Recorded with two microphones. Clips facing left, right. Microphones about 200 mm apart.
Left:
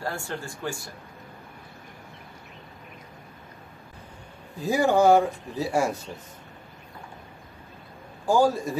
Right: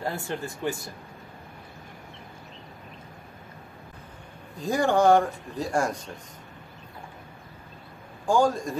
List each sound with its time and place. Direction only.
0.0 s speech: 20° right (ahead or behind)
4.6 s speech: 5° left (ahead or behind)
8.3 s speech: 5° left (ahead or behind)